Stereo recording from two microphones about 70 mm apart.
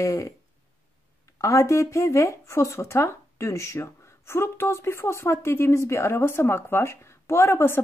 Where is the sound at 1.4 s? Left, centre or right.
Left.